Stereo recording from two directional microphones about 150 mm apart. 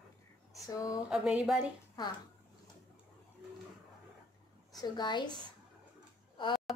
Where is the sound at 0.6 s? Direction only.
25° left (ahead or behind).